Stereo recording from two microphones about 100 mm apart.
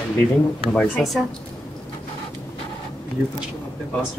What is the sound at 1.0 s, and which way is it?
Speech, 5° left (ahead or behind).